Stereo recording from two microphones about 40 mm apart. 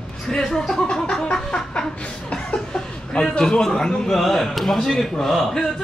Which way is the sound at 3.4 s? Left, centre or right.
Centre.